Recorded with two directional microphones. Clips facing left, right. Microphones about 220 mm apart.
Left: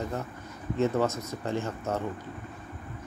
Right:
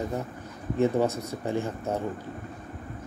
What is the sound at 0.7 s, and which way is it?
Speech, 15° right (ahead or behind).